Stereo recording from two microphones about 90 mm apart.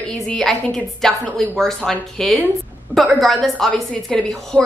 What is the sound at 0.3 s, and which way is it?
A woman's voice, 5° left (ahead or behind).